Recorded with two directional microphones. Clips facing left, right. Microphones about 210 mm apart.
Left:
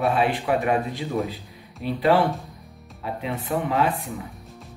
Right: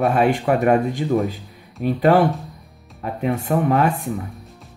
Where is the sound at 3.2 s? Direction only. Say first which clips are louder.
Right 7 dB; 50° right (ahead or behind).